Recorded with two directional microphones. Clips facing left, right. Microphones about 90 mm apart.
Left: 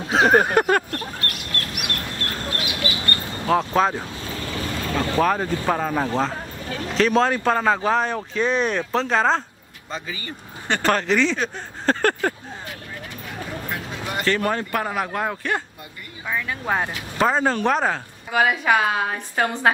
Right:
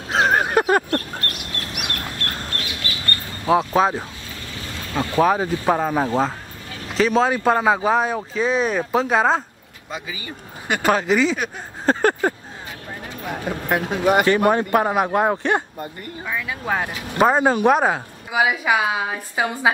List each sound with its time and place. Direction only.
0.1 s a sound: centre (ahead or behind)
1.7 s duck: centre (ahead or behind)
2.6 s duck: 15° left (ahead or behind)
3.4 s a woman's voice: 5° right (ahead or behind)
13.2 s speech: 55° right (ahead or behind)
14.2 s speech: 15° right (ahead or behind)
16.3 s speech: centre (ahead or behind)
17.2 s a woman's voice: 10° right (ahead or behind)